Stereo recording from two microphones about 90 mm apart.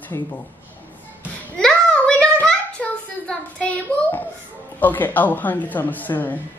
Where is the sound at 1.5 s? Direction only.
10° left (ahead or behind).